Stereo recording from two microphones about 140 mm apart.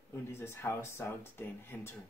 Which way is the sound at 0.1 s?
20° left (ahead or behind).